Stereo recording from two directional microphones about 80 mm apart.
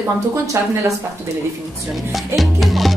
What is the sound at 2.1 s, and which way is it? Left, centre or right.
Music, centre.